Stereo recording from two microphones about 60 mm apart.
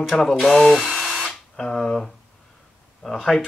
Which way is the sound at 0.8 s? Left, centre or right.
Centre.